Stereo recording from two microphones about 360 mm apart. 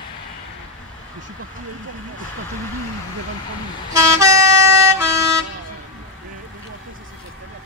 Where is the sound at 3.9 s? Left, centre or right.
Centre.